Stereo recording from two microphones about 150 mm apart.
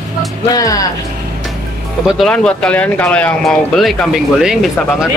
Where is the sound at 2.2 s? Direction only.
5° left (ahead or behind).